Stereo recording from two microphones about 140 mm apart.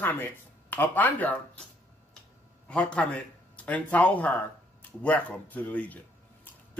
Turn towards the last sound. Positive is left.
turn(degrees=10)  # may be behind; listen again after turning